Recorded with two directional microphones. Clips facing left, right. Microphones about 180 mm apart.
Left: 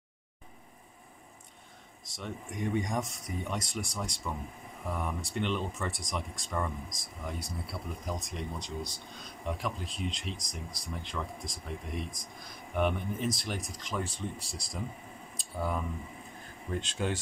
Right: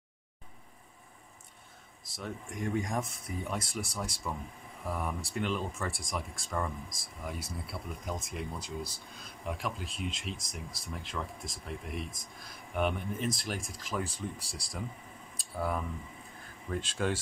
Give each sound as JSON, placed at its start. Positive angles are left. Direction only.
{"t": 2.0, "sound": "speech", "side_deg": 0}
{"t": 14.4, "sound": "speech", "side_deg": -30}
{"t": 15.5, "sound": "speech", "side_deg": 0}